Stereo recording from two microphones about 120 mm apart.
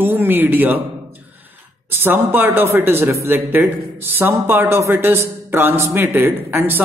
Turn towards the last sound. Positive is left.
turn(degrees=-20)  # may be behind; listen again after turning